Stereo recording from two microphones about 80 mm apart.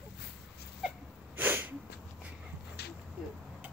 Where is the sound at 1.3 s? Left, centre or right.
Right.